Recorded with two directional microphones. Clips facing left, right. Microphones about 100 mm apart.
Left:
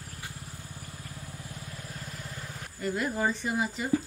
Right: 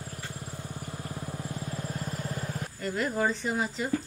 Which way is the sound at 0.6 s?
40° right (ahead or behind).